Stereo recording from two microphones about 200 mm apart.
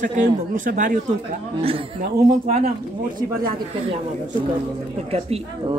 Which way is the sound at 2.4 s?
35° right (ahead or behind).